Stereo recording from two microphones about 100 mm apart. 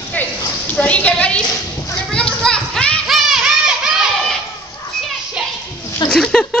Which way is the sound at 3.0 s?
5° right (ahead or behind).